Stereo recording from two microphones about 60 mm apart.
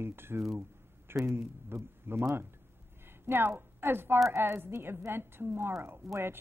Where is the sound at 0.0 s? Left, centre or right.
Right.